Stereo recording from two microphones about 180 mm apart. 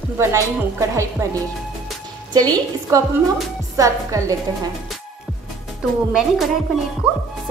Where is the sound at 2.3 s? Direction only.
20° right (ahead or behind).